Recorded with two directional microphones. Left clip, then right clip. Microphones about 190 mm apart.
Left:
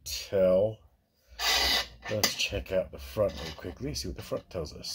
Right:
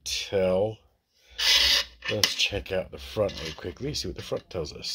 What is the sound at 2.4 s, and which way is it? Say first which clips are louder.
Speech: right 3 dB; 30° right (ahead or behind).